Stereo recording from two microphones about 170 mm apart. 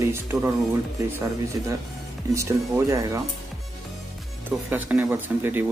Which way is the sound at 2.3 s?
15° right (ahead or behind).